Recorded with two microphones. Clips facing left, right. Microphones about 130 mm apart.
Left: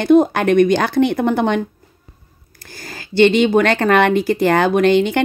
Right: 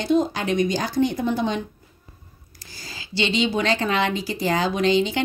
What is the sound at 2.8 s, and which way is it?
Speech, 55° left (ahead or behind).